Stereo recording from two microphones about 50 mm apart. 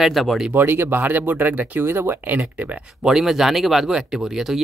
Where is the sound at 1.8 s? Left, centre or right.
Right.